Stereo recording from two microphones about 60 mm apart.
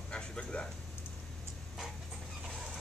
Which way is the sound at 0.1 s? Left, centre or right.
Centre.